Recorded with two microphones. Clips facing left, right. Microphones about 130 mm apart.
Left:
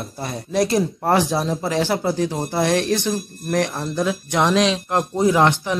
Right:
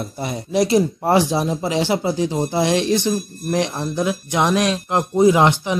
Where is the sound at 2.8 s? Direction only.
60° left (ahead or behind).